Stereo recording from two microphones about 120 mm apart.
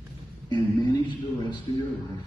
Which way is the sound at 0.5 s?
40° left (ahead or behind).